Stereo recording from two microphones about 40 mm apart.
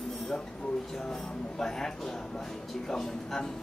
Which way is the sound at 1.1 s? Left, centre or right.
Centre.